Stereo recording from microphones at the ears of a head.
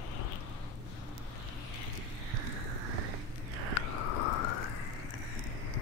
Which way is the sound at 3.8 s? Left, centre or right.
Left.